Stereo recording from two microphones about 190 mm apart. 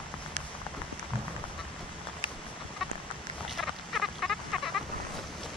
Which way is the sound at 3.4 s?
Centre (ahead or behind).